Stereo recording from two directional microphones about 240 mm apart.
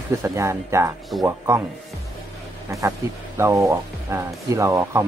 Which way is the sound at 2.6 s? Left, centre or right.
Centre.